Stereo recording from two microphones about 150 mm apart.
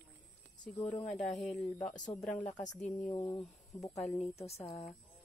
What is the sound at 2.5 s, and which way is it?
Speech, 50° left (ahead or behind).